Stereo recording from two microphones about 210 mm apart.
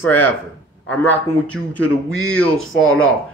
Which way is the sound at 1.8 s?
75° left (ahead or behind).